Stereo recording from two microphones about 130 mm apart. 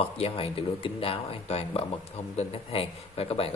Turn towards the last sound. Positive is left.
turn(degrees=50)  # may be behind; listen again after turning